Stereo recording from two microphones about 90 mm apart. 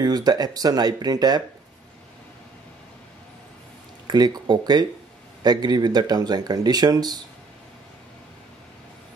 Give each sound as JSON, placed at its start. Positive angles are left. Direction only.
{"t": 0.0, "sound": "speech", "side_deg": -50}
{"t": 4.1, "sound": "speech", "side_deg": -50}